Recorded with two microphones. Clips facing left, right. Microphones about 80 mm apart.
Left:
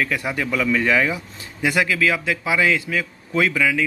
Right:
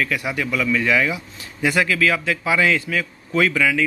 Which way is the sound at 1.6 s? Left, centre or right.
Centre.